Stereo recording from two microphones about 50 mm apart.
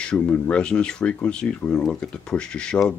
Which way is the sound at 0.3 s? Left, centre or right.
Left.